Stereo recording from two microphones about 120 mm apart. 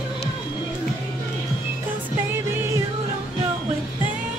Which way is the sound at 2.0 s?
20° right (ahead or behind).